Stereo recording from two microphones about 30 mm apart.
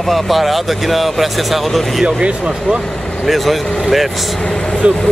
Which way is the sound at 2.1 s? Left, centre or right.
Right.